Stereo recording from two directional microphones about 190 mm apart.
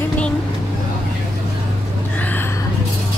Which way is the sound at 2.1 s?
10° left (ahead or behind).